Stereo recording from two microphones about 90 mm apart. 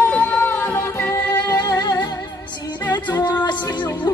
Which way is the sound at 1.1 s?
40° left (ahead or behind).